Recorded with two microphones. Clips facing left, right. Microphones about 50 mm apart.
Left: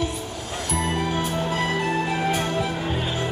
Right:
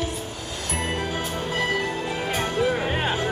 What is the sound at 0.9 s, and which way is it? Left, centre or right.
Music, left.